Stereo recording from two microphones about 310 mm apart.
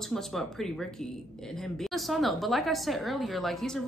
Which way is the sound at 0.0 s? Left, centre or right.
Centre.